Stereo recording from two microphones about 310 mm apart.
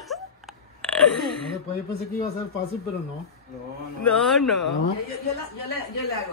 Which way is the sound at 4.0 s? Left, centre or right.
Centre.